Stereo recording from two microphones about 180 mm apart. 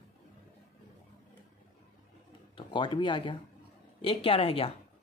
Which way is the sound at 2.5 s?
30° left (ahead or behind).